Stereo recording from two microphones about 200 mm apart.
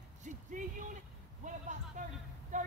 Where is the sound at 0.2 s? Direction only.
40° right (ahead or behind).